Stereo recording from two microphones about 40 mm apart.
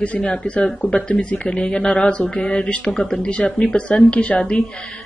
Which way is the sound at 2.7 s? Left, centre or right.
Left.